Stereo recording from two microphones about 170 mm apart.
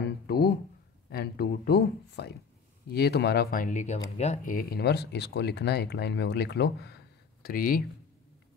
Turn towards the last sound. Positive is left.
turn(degrees=60)  # may be behind; listen again after turning